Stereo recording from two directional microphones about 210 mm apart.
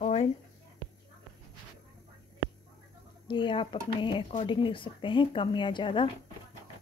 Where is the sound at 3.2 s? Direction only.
25° left (ahead or behind).